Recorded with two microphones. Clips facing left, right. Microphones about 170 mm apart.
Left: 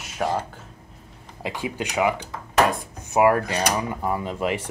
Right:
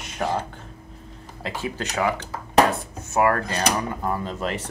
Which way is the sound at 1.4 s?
15° left (ahead or behind).